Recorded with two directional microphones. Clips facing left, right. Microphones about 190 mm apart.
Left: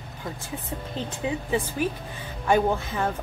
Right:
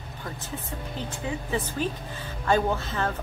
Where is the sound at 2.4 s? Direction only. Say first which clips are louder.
Left 2 dB; 15° left (ahead or behind).